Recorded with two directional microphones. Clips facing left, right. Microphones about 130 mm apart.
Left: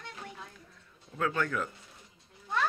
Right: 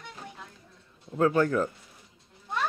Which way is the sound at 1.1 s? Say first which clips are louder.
Right 8 dB; 35° right (ahead or behind).